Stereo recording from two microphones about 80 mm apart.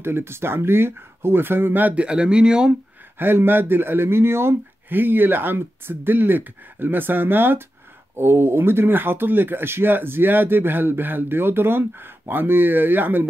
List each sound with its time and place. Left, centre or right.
0.0 s speech: right; by 2.7 s centre
3.2 s speech: right